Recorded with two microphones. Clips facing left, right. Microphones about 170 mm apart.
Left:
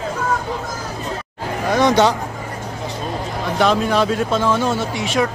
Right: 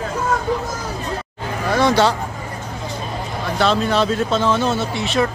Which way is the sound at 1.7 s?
20° left (ahead or behind).